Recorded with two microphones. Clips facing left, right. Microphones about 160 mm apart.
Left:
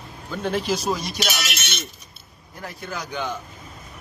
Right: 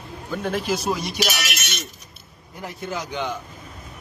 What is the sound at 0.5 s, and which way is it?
Speech, 5° right (ahead or behind).